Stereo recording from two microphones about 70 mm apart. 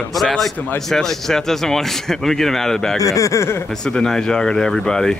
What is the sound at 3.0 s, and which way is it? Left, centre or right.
Speech, left.